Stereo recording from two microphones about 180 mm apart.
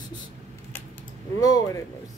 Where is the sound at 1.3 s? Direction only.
20° left (ahead or behind).